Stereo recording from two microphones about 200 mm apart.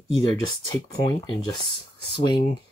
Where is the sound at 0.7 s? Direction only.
25° left (ahead or behind).